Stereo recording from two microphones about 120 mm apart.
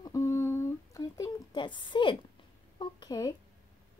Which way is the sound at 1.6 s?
40° left (ahead or behind).